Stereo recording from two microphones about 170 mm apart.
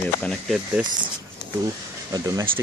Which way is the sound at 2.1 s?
20° right (ahead or behind).